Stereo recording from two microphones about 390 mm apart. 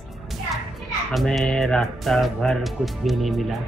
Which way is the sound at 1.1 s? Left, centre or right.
Centre.